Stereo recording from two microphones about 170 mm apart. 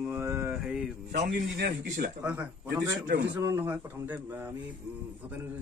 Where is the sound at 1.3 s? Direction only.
70° right (ahead or behind).